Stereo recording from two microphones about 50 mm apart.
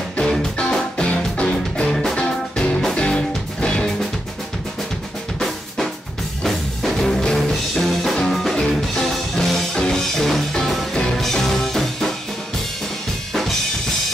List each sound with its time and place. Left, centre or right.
0.7 s music: centre
6.4 s music: centre
13.3 s drum kit: centre